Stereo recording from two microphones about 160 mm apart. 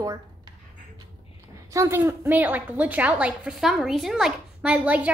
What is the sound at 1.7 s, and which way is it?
A woman's voice, 15° right (ahead or behind).